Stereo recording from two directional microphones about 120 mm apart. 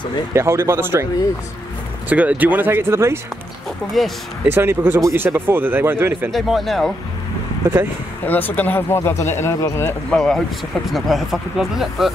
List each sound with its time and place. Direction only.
0.3 s speech: 20° right (ahead or behind)
2.0 s speech: 15° right (ahead or behind)
4.0 s speech: centre (ahead or behind)
4.5 s speech: 20° right (ahead or behind)
6.3 s speech: centre (ahead or behind)
8.3 s speech: 15° left (ahead or behind)
10.0 s speech: 5° left (ahead or behind)